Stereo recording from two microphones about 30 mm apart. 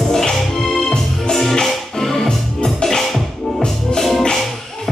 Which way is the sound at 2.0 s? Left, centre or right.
Centre.